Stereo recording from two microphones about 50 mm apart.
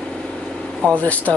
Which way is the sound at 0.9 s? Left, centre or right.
Left.